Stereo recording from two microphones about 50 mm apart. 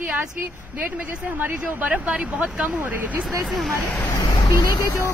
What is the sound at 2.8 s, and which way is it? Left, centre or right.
Speech, right.